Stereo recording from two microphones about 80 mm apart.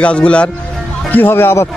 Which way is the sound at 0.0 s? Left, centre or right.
Centre.